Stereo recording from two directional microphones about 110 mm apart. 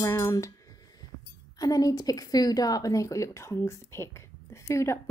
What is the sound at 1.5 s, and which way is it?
Speech, 35° left (ahead or behind).